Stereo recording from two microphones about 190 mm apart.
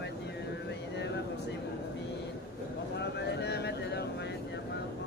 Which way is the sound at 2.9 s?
65° left (ahead or behind).